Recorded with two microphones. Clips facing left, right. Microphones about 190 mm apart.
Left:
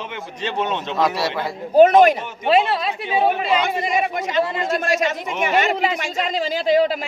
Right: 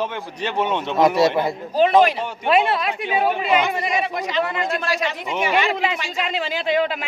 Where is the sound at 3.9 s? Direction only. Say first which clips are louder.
Left 2 dB; 50° left (ahead or behind).